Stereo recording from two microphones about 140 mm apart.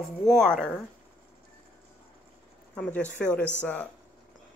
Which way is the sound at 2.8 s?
10° left (ahead or behind).